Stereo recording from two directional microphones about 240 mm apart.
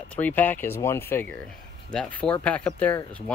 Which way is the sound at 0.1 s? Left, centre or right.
Centre.